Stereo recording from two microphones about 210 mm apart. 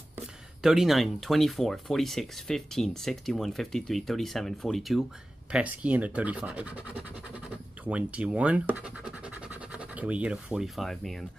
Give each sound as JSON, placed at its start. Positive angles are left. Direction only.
{"t": 0.6, "sound": "speech", "side_deg": 0}